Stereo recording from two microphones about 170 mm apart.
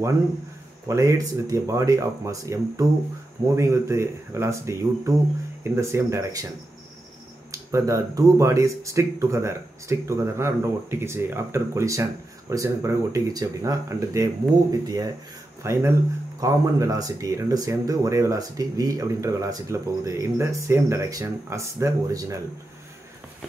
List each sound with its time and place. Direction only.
0.8 s speech: 20° right (ahead or behind)
7.7 s speech: 20° right (ahead or behind)